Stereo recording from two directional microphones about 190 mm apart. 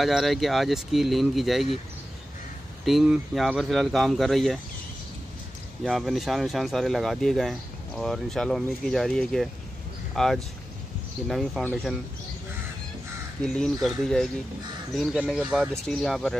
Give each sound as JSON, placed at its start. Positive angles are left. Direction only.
{"t": 0.0, "sound": "speech", "side_deg": 0}
{"t": 2.8, "sound": "speech", "side_deg": 0}
{"t": 5.9, "sound": "speech", "side_deg": 0}
{"t": 13.4, "sound": "speech", "side_deg": 5}